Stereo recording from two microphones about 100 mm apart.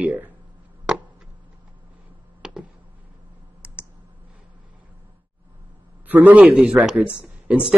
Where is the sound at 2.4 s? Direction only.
5° right (ahead or behind).